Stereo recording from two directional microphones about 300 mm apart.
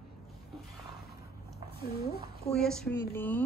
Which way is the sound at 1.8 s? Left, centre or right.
Left.